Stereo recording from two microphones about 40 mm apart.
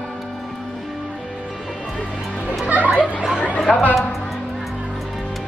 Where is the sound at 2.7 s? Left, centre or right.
Right.